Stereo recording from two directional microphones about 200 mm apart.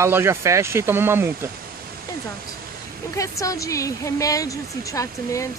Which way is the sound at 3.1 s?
15° left (ahead or behind).